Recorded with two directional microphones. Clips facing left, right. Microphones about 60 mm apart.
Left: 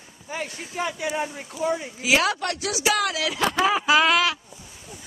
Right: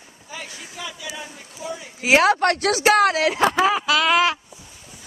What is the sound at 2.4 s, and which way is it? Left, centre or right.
Speech, right.